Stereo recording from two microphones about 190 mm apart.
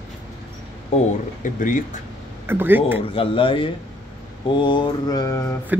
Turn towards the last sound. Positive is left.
turn(degrees=15)  # may be behind; listen again after turning